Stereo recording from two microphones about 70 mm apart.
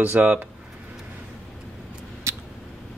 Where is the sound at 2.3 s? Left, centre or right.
Right.